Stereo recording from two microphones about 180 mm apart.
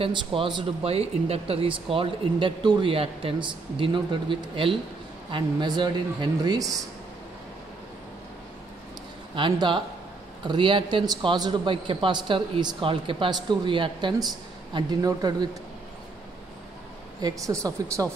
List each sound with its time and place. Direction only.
0.0 s speech: 30° right (ahead or behind)
9.3 s speech: 25° right (ahead or behind)
17.2 s speech: 20° right (ahead or behind)